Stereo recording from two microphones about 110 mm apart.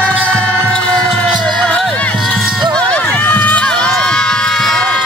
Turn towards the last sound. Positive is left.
turn(degrees=5)  # may be behind; listen again after turning